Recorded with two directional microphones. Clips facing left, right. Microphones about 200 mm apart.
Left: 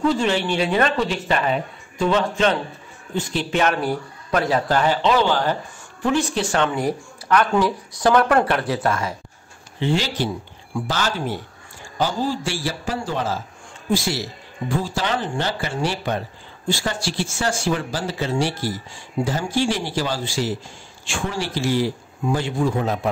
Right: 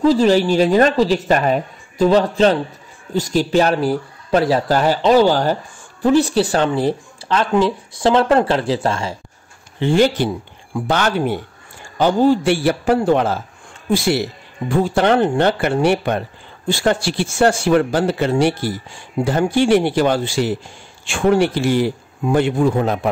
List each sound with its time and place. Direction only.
0.0 s a woman's voice: 35° right (ahead or behind)
9.8 s speech: 50° right (ahead or behind)